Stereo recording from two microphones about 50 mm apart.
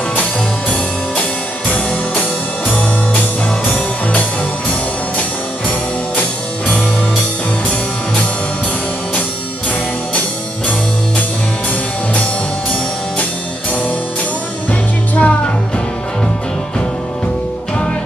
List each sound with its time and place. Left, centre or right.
2.7 s music: left
14.7 s music: left